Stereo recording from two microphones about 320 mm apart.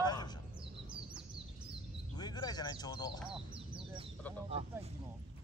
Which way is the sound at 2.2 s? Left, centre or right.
Centre.